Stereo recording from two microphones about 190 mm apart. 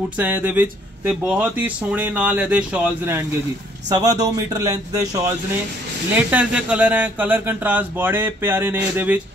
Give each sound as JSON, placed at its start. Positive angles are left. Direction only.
{"t": 0.2, "sound": "a man's voice", "side_deg": -5}
{"t": 6.1, "sound": "speech", "side_deg": -5}